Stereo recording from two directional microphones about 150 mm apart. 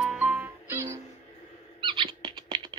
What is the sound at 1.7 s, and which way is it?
Rodents, 35° right (ahead or behind).